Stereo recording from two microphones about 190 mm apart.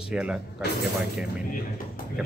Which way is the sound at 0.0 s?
5° right (ahead or behind).